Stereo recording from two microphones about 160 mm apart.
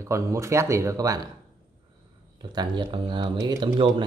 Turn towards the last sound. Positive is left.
turn(degrees=-30)  # may be behind; listen again after turning